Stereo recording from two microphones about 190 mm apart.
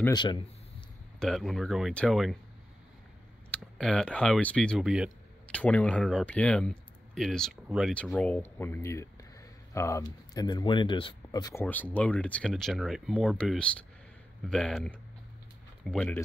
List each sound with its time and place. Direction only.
0.1 s speech: 25° left (ahead or behind)
1.2 s speech: centre (ahead or behind)
3.5 s speech: 5° left (ahead or behind)
5.5 s speech: 5° left (ahead or behind)
11.6 s speech: 10° left (ahead or behind)